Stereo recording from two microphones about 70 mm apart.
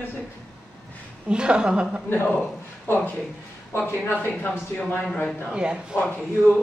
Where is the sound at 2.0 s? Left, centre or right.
Left.